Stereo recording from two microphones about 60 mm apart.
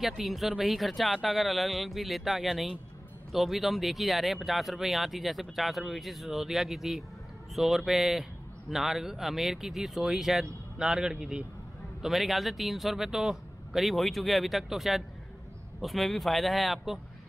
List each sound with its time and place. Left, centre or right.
0.0 s a man's voice: centre